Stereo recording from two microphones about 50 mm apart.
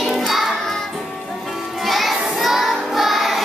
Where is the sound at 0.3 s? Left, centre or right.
Centre.